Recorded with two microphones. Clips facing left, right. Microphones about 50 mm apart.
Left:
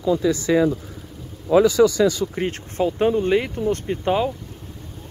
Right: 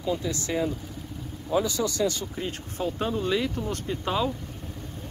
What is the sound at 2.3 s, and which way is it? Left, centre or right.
Speech, left.